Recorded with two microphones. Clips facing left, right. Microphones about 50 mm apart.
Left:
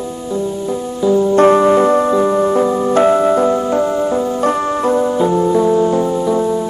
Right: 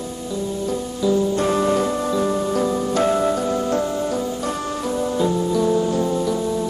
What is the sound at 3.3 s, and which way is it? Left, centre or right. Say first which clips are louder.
Music: left 7 dB; left.